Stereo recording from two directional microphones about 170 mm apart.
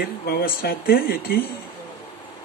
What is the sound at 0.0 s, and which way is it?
Speech, 65° left (ahead or behind).